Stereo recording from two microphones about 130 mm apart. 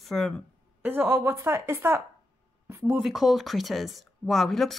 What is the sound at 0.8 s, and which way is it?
A woman's voice, 15° right (ahead or behind).